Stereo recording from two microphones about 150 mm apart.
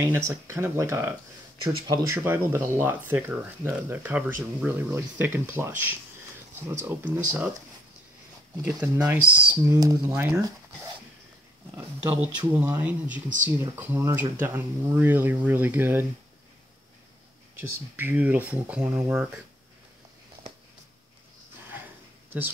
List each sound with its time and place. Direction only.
0.0 s speech: 20° right (ahead or behind)
8.7 s speech: 20° right (ahead or behind)
10.1 s speech: 10° right (ahead or behind)
11.7 s speech: 10° right (ahead or behind)
17.6 s speech: 15° right (ahead or behind)